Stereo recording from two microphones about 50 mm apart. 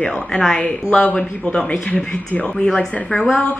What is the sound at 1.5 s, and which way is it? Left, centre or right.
Speech, left.